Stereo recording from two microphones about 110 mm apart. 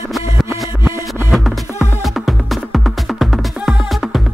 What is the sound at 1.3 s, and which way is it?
Music, centre (ahead or behind).